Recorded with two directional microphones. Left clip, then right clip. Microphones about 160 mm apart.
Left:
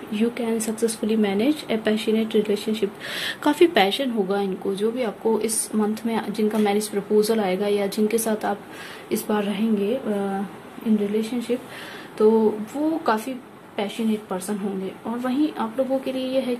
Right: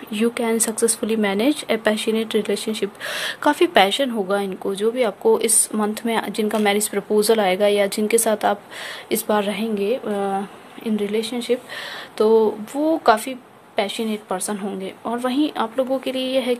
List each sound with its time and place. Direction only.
0.1 s speech: 50° right (ahead or behind); by 10.3 s 90° right
11.0 s speech: 75° right (ahead or behind)
13.0 s a woman's voice: 70° right (ahead or behind)